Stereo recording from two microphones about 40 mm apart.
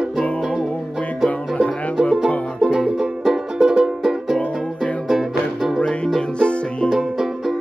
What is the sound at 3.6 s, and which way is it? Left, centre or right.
Music, right.